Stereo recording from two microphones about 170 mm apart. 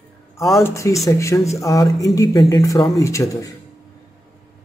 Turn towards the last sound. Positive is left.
turn(degrees=20)  # may be behind; listen again after turning